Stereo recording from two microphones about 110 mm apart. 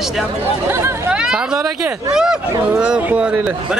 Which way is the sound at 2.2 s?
5° right (ahead or behind).